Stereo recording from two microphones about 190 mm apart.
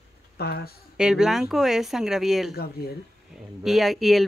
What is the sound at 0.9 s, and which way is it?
Speech, 5° right (ahead or behind).